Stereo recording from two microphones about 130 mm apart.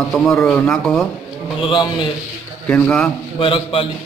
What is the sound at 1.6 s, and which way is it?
Speech, 40° left (ahead or behind).